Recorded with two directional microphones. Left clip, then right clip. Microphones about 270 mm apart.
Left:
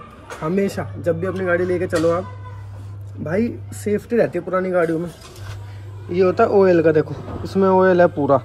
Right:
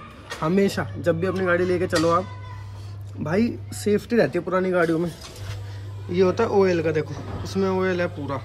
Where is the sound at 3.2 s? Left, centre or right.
Centre.